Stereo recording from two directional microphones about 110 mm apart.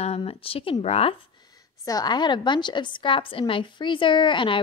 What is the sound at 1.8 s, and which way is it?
A woman's voice, 35° left (ahead or behind).